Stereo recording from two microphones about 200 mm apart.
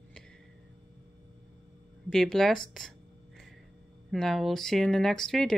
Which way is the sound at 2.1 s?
Centre (ahead or behind).